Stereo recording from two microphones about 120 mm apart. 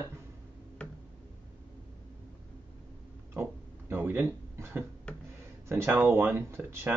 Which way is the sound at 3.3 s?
20° right (ahead or behind).